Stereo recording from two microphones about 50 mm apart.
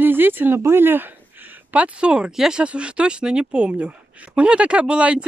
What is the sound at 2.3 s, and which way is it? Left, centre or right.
Speech, centre.